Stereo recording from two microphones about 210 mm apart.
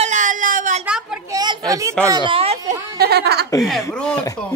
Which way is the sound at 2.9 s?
50° right (ahead or behind).